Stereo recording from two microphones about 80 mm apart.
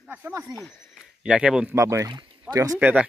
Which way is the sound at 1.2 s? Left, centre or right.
Centre.